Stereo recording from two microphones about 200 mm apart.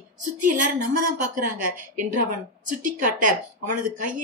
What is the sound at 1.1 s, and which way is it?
Speech, 40° right (ahead or behind).